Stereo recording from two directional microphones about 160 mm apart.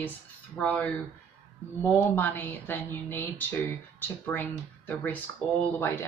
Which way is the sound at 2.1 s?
10° left (ahead or behind).